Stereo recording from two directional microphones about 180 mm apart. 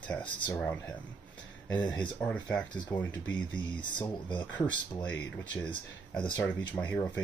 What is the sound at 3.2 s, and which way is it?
Speech, 10° left (ahead or behind).